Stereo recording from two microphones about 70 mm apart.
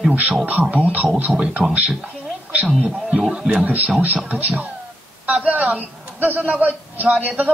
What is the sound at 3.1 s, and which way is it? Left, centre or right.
Speech, centre.